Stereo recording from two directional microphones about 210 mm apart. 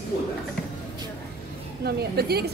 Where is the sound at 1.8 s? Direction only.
50° right (ahead or behind).